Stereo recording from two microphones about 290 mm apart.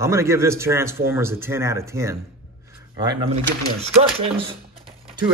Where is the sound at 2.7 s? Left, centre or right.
Centre.